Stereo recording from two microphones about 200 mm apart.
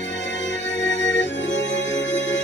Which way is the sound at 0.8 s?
65° left (ahead or behind).